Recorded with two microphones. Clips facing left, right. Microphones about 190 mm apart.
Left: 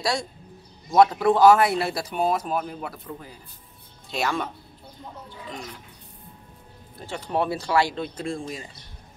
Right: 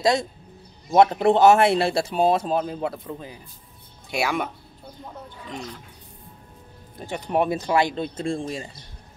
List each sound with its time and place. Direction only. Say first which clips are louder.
0.0 s speech: right 6 dB; 20° right (ahead or behind)
7.0 s speech: right 3 dB; 15° right (ahead or behind)